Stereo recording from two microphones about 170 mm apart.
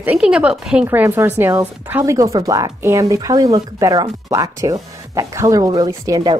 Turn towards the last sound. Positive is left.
turn(degrees=-20)  # may be behind; listen again after turning